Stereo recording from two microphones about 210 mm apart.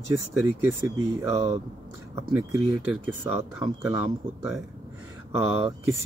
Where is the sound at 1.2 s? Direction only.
15° right (ahead or behind).